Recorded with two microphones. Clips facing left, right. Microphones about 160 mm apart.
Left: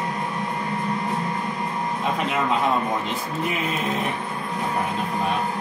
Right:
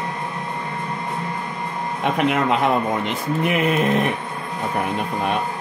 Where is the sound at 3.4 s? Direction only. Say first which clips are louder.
Right 8 dB; 65° right (ahead or behind).